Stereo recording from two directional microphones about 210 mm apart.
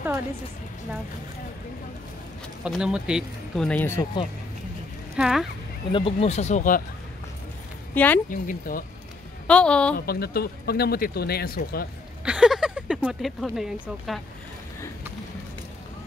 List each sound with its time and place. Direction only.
2.6 s speech: 5° right (ahead or behind)
5.1 s speech: centre (ahead or behind)
5.9 s speech: 25° left (ahead or behind)
7.9 s speech: 10° left (ahead or behind)
8.3 s speech: 40° left (ahead or behind)
9.5 s speech: 5° left (ahead or behind)
9.9 s speech: 50° left (ahead or behind)
12.3 s speech: 5° right (ahead or behind)